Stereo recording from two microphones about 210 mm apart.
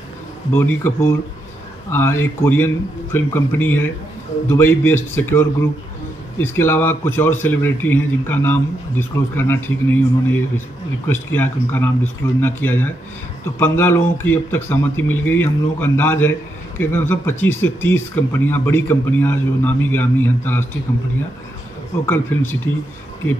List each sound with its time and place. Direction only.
0.5 s speech: 10° left (ahead or behind)
22.0 s speech: 10° left (ahead or behind)